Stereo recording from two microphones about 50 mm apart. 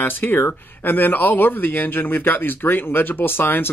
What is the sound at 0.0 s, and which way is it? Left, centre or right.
Speech, left.